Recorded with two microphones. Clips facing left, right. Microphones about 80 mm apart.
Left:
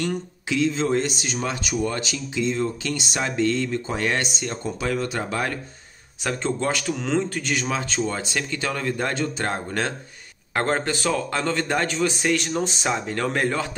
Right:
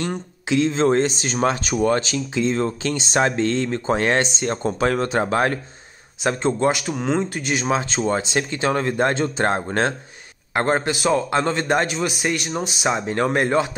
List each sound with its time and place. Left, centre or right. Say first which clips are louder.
0.0 s a man's voice: even; right
2.8 s speech: right 7 dB; right
4.5 s speech: right 6 dB; right
6.2 s a man's voice: right 5 dB; right
10.5 s a man's voice: right 3 dB; centre
13.0 s a man's voice: right 4 dB; right